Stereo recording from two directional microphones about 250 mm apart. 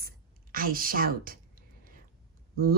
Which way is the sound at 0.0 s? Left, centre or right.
Right.